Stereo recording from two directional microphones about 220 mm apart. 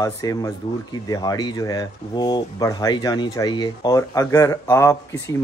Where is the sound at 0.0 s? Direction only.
15° left (ahead or behind).